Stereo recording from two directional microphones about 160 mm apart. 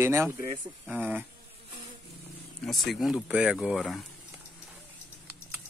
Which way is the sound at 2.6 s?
Centre (ahead or behind).